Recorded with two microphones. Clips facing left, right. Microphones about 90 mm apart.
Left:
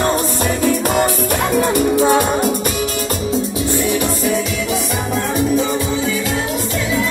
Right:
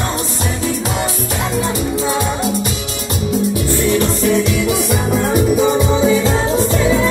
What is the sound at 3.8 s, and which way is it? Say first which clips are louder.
Music: right 3 dB; 10° left (ahead or behind).